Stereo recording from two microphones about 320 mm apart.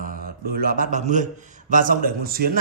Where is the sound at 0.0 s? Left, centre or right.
Right.